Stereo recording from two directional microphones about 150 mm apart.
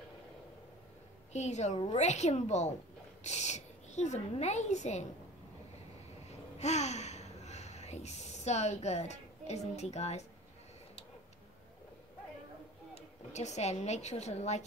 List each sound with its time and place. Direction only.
1.3 s a woman's voice: 50° left (ahead or behind)
6.6 s speech: 50° left (ahead or behind)
12.9 s a woman's voice: 50° left (ahead or behind)